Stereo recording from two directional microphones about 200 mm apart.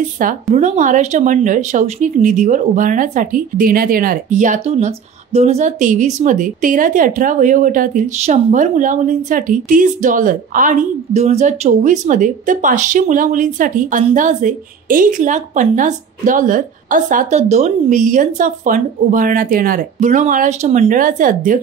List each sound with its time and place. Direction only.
0.2 s speech: 45° right (ahead or behind)